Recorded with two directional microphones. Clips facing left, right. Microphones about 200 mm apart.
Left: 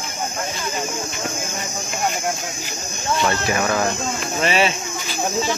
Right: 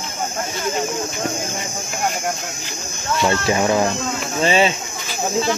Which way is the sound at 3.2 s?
25° right (ahead or behind).